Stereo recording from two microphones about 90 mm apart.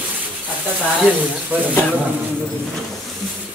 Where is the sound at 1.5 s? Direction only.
20° right (ahead or behind).